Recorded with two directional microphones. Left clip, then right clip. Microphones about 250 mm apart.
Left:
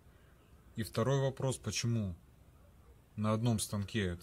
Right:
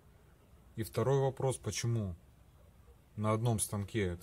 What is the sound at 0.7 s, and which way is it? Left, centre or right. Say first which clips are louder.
Speech: right 2 dB; right.